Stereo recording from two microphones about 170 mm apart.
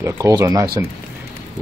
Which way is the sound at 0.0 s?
20° right (ahead or behind).